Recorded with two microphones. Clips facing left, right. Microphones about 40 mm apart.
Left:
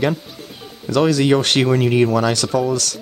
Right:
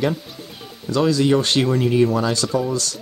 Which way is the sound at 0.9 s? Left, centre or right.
Left.